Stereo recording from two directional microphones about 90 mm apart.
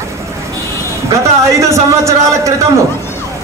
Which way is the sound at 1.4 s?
35° right (ahead or behind).